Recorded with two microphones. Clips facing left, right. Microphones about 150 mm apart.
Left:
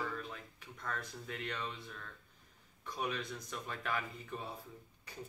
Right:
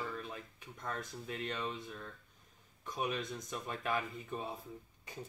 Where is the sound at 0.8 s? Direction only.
20° right (ahead or behind).